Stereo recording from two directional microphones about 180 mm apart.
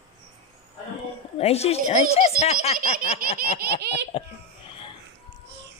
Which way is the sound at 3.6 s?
65° right (ahead or behind).